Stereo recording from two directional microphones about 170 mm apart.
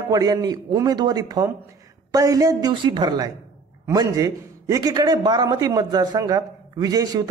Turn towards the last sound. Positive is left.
turn(degrees=-20)  # may be behind; listen again after turning